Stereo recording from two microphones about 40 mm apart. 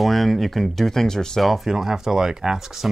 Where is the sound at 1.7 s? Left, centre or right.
Centre.